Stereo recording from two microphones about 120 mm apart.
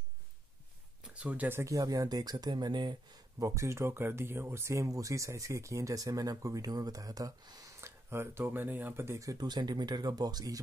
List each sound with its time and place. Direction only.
1.0 s speech: 10° right (ahead or behind); by 3.0 s 40° right (ahead or behind)
3.3 s speech: 25° right (ahead or behind)
7.8 s speech: 20° right (ahead or behind)